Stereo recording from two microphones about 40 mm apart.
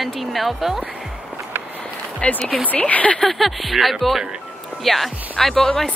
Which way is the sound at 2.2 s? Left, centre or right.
Left.